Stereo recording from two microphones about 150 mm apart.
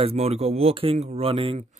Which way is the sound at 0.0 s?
45° right (ahead or behind).